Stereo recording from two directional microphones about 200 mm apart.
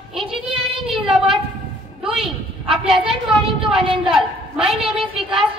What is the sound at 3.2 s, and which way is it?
Speech, centre (ahead or behind).